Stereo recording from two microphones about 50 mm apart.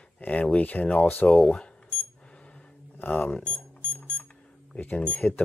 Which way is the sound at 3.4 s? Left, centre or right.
Left.